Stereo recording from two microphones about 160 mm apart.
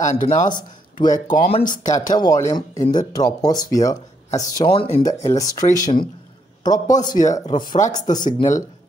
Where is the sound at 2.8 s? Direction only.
50° left (ahead or behind).